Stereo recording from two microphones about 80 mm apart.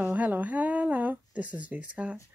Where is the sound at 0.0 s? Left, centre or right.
Centre.